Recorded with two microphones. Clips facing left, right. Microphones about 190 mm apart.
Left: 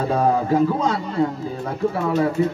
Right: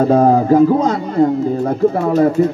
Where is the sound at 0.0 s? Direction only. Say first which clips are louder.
Right 8 dB; 40° right (ahead or behind).